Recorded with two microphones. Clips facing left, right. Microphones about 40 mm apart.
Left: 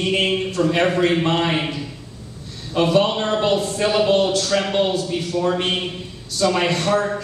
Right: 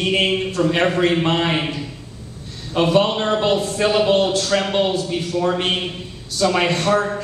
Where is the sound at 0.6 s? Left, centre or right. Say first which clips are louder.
Even; centre.